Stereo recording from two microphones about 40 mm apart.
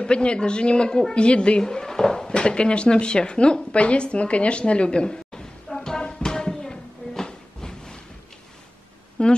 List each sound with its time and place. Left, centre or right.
0.0 s a woman's voice: left
1.6 s drawer open or close: centre
9.2 s a sound: left